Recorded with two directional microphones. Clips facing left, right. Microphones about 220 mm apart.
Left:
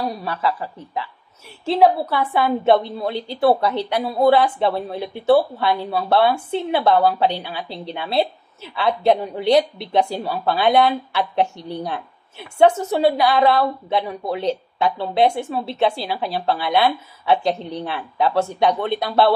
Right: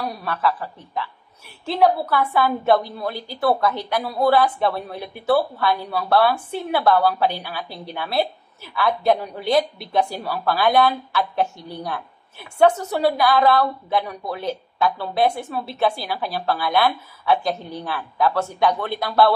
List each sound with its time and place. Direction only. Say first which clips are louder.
0.0 s a woman's voice: left 1 dB; 25° left (ahead or behind)